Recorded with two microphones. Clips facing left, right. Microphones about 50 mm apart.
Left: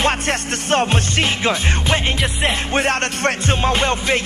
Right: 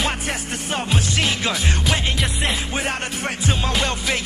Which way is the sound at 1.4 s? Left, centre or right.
Left.